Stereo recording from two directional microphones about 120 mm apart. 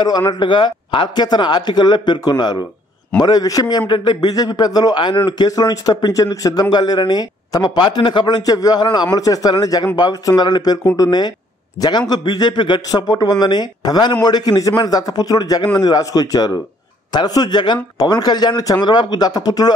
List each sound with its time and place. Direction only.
0.3 s a man's voice: 40° left (ahead or behind)